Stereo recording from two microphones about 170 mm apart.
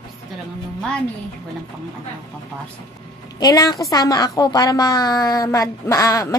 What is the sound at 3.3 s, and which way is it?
A woman's voice, 20° left (ahead or behind).